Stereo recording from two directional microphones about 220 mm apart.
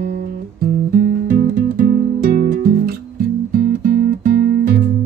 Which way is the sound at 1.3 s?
40° right (ahead or behind).